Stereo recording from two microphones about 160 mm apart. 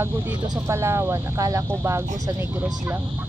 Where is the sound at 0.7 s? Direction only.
15° right (ahead or behind).